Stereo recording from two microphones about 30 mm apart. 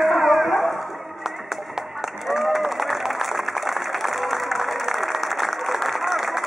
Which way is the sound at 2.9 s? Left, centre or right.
Centre.